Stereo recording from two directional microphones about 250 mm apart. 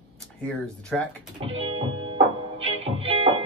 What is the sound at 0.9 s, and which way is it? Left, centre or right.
Speech, centre.